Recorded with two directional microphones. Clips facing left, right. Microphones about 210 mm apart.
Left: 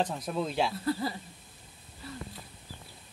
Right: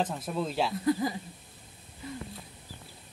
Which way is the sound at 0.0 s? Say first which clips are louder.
Even; centre (ahead or behind).